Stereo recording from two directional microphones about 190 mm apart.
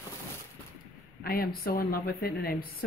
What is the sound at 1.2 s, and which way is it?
Speech, 50° left (ahead or behind).